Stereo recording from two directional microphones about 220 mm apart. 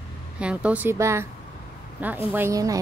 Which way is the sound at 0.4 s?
5° right (ahead or behind).